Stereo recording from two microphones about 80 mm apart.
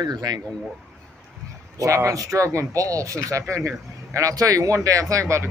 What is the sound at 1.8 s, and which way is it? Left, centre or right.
Speech, right.